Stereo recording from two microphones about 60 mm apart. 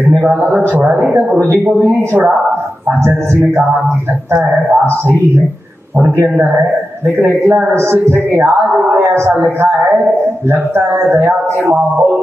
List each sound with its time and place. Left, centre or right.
0.2 s a man's voice: right
1.9 s a man's voice: right
4.6 s speech: right
7.2 s speech: right
9.0 s speech: right
11.1 s speech: right